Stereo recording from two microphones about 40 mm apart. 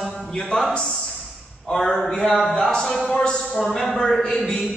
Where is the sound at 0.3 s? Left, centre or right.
Centre.